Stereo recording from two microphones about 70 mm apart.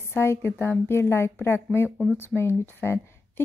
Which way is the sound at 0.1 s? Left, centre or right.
Left.